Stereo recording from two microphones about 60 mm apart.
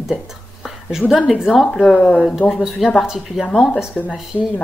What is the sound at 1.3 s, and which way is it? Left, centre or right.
Speech, centre.